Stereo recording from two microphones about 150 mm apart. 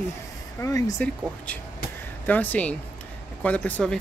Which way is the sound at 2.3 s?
10° left (ahead or behind).